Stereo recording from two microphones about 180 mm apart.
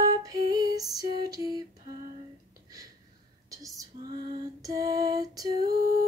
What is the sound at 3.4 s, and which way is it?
Female singing, 20° right (ahead or behind).